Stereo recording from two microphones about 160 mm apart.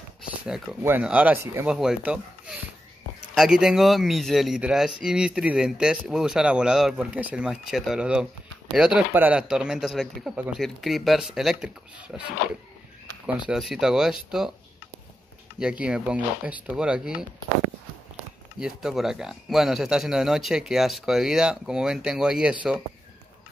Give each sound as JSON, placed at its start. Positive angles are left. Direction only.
{"t": 0.8, "sound": "speech", "side_deg": -10}
{"t": 1.7, "sound": "speech", "side_deg": -5}
{"t": 13.5, "sound": "speech", "side_deg": -5}
{"t": 15.8, "sound": "speech", "side_deg": -5}
{"t": 18.6, "sound": "speech", "side_deg": -5}